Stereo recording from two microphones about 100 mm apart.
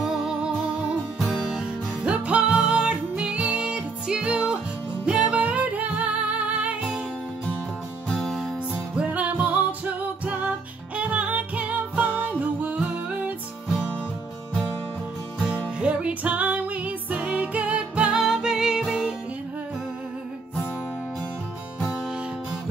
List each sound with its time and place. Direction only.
0.0 s music: centre (ahead or behind)
8.1 s music: centre (ahead or behind)
8.9 s music: 15° right (ahead or behind)
15.3 s music: 10° right (ahead or behind)